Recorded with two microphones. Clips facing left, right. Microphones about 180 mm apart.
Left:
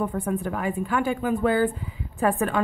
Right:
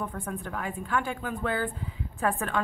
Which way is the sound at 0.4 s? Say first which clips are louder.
Left 7 dB; 5° left (ahead or behind).